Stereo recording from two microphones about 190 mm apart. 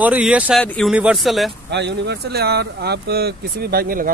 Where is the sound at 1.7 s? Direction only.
65° right (ahead or behind).